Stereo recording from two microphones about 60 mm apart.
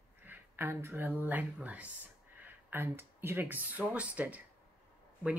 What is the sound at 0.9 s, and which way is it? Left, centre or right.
Speech, right.